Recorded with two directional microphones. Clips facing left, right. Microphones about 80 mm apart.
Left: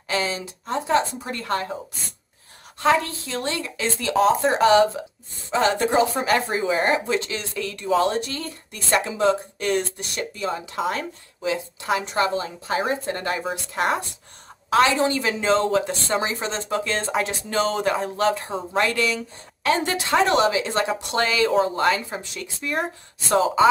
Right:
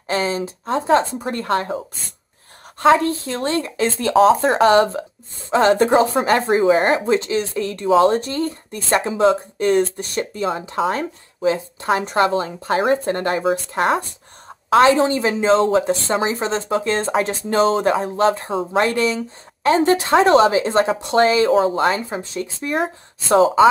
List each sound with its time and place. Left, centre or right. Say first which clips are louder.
0.1 s speech: right 5 dB; right
2.8 s speech: right 6 dB; right
14.7 s a woman's voice: right 5 dB; right